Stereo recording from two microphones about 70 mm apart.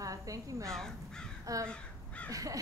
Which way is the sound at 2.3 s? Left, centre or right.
Right.